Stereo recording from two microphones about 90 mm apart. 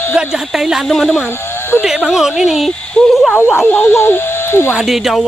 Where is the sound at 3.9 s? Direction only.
30° left (ahead or behind).